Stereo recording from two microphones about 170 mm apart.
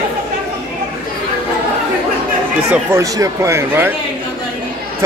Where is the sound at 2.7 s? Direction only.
15° right (ahead or behind).